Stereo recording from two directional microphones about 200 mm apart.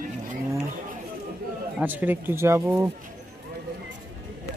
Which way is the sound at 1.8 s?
10° right (ahead or behind).